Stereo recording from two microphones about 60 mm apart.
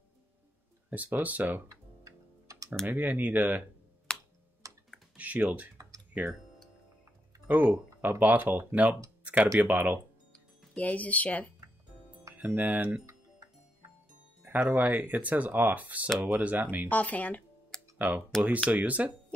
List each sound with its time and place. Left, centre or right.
0.8 s speech: right
1.7 s music: right
2.9 s speech: right
4.1 s tick-tock: centre
4.6 s typing: right
5.1 s speech: right
7.4 s speech: right
9.2 s music: right
9.6 s speech: right
10.7 s speech: left
12.4 s speech: right
14.4 s speech: right
16.9 s speech: left
17.9 s speech: right